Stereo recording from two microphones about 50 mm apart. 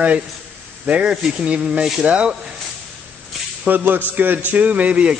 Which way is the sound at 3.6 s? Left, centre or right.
Right.